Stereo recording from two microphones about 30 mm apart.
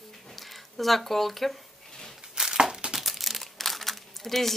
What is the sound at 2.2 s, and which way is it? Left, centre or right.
Crumpling, centre.